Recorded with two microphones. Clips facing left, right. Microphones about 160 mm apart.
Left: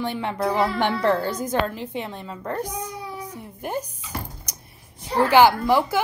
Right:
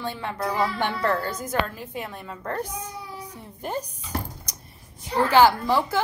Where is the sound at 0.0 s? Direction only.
20° left (ahead or behind).